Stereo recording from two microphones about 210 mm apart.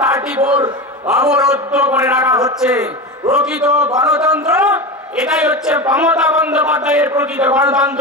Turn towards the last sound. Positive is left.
turn(degrees=-5)  # may be behind; listen again after turning